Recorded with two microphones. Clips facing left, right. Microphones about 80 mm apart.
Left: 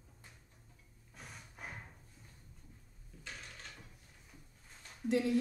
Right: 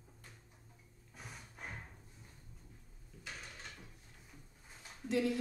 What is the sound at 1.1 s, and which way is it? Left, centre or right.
Snort, centre.